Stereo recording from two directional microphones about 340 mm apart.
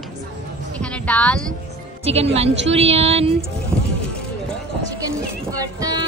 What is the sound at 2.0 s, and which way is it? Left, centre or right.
Music, centre.